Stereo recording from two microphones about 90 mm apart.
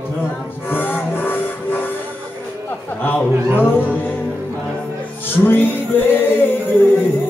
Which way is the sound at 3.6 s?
20° left (ahead or behind).